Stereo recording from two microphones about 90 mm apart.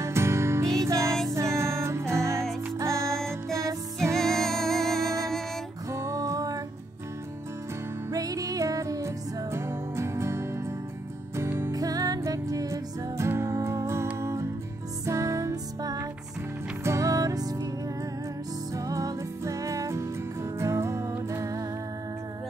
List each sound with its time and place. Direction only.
0.0 s music: 30° right (ahead or behind)
3.1 s music: 5° left (ahead or behind)
5.9 s music: 35° right (ahead or behind)
8.1 s music: 40° right (ahead or behind)
11.7 s music: 40° right (ahead or behind)
18.7 s music: 40° right (ahead or behind)